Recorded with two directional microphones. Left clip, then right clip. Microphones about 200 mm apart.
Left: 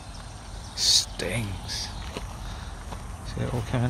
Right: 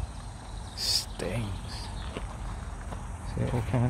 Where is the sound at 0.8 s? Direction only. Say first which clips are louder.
Left 7 dB; centre (ahead or behind).